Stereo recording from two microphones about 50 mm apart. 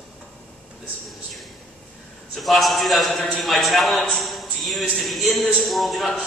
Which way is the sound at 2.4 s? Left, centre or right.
Centre.